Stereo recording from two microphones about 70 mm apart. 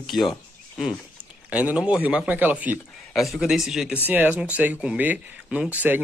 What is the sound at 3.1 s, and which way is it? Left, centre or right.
Speech, centre.